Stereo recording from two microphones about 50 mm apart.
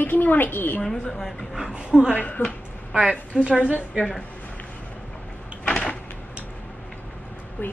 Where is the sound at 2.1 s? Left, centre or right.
Left.